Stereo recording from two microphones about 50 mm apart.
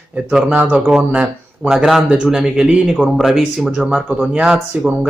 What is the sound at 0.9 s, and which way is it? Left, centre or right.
A man's voice, right.